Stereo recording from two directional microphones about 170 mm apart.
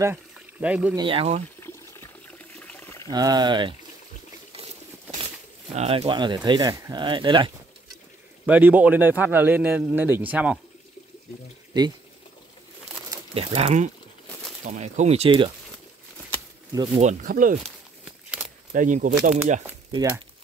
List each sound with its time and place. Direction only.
0.0 s speech: 10° right (ahead or behind)
0.9 s speech: 30° right (ahead or behind)
2.3 s water: 10° left (ahead or behind)
3.1 s speech: 25° right (ahead or behind)
5.8 s speech: 35° right (ahead or behind)
8.5 s a man's voice: 10° right (ahead or behind)
11.7 s speech: 25° right (ahead or behind)
13.3 s speech: 35° right (ahead or behind)
14.7 s speech: 45° right (ahead or behind)
17.0 s speech: 50° right (ahead or behind)
18.7 s speech: 45° right (ahead or behind)
19.9 s speech: 20° right (ahead or behind)